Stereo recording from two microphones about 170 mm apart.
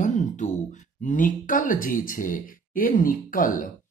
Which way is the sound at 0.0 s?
45° left (ahead or behind).